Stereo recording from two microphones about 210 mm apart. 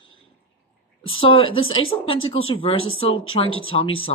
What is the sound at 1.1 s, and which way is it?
Speech, 25° left (ahead or behind).